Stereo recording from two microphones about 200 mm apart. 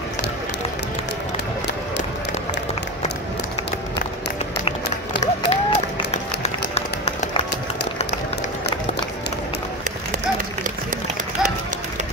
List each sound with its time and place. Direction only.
5.2 s applause: 35° left (ahead or behind)